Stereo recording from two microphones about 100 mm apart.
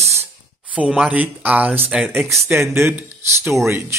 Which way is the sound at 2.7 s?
25° right (ahead or behind).